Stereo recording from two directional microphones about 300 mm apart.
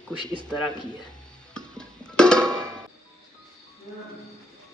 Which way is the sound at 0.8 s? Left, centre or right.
Centre.